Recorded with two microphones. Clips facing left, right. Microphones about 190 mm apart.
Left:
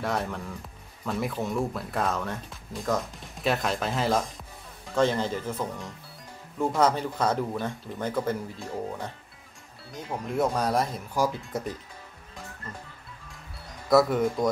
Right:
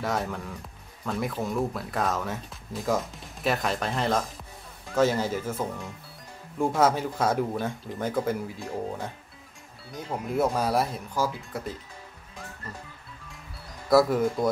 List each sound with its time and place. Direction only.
0.0 s speech: centre (ahead or behind)
11.1 s speech: 15° left (ahead or behind)
13.8 s speech: centre (ahead or behind)